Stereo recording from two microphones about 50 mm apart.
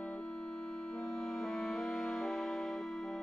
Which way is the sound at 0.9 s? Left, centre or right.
Centre.